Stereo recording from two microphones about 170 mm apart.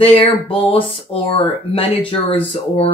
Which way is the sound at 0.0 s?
30° left (ahead or behind).